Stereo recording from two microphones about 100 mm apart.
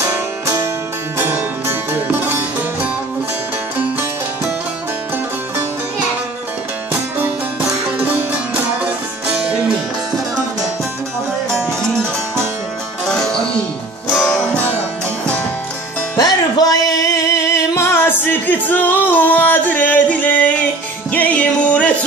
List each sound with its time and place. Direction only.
1.1 s music: 25° right (ahead or behind)
8.0 s music: 15° right (ahead or behind)
13.0 s music: 5° left (ahead or behind)
16.2 s music: 40° left (ahead or behind); by 21.9 s 15° left (ahead or behind)